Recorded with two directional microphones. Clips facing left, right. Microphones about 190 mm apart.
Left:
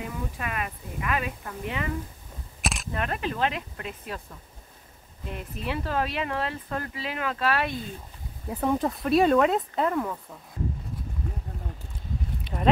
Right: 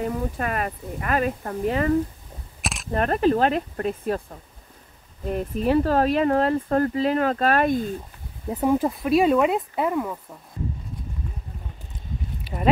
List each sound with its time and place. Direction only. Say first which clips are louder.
0.0 s speech: right 8 dB; 45° right (ahead or behind)
2.6 s single-lens reflex camera: even; centre (ahead or behind)
2.9 s speech: right 13 dB; 40° right (ahead or behind)
8.6 s speech: right 4 dB; 5° right (ahead or behind)
12.5 s a sound: right 3 dB; 5° right (ahead or behind)